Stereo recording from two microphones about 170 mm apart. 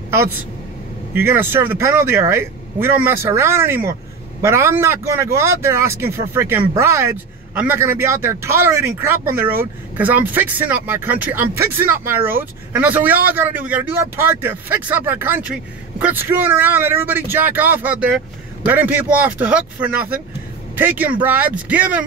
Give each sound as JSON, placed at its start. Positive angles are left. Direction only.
{"t": 1.1, "sound": "speech", "side_deg": -15}